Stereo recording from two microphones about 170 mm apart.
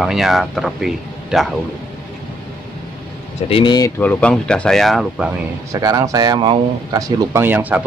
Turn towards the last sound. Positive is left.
turn(degrees=-10)  # may be behind; listen again after turning